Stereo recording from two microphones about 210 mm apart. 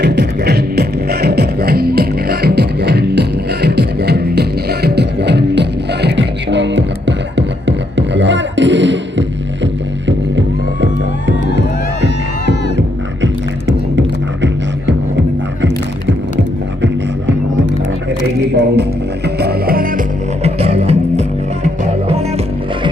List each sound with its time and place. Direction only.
0.0 s music: 55° right (ahead or behind)
13.9 s music: 60° right (ahead or behind)
18.5 s music: 50° right (ahead or behind)
20.4 s music: 30° right (ahead or behind)